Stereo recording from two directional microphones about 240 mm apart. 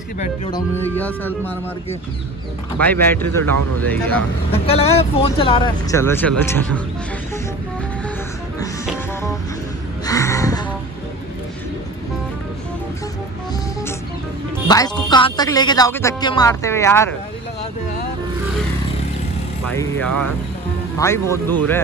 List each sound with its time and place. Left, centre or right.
0.5 s speech: centre
2.8 s speech: centre
4.5 s speech: left; by 6.8 s centre
10.0 s music: centre
14.7 s speech: centre
19.7 s speech: centre